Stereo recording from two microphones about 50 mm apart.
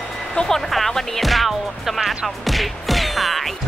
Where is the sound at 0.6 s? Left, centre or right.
Centre.